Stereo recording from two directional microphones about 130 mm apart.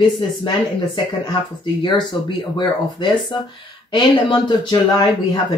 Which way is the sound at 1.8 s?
35° left (ahead or behind).